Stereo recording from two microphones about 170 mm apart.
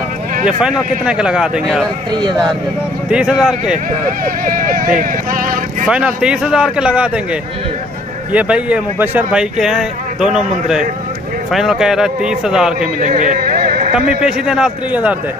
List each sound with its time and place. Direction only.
0.5 s a man's voice: 5° right (ahead or behind)
2.1 s speech: 25° right (ahead or behind)
3.1 s a man's voice: 5° right (ahead or behind)
3.7 s speech: 55° right (ahead or behind)
5.9 s a man's voice: 5° right (ahead or behind)
8.3 s a man's voice: 5° right (ahead or behind)
13.0 s a sound: 50° right (ahead or behind)
13.9 s a man's voice: 5° right (ahead or behind)